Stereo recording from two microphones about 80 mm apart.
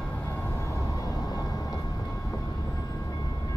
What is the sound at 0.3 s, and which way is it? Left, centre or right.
Vehicle, left.